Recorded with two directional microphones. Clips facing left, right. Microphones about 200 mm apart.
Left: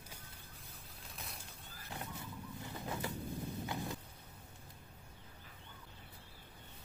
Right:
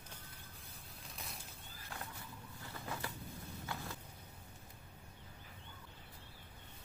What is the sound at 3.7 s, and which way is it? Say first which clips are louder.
Vehicle: left 2 dB; 20° left (ahead or behind).